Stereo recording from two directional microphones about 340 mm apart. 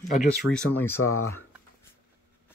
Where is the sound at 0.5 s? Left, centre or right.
Centre.